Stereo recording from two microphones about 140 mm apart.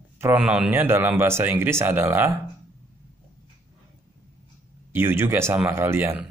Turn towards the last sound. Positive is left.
turn(degrees=-15)  # may be behind; listen again after turning